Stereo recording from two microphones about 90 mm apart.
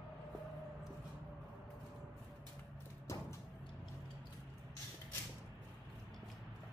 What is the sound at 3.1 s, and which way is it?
Music, 35° left (ahead or behind).